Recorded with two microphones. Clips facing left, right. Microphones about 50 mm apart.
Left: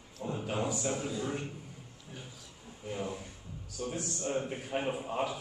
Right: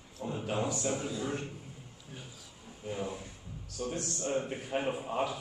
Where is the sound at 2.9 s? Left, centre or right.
Centre.